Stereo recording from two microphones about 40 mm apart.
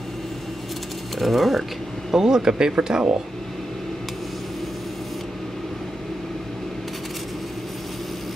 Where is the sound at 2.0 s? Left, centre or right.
Centre.